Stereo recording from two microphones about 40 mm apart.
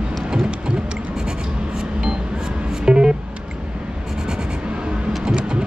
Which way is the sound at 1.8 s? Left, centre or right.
Centre.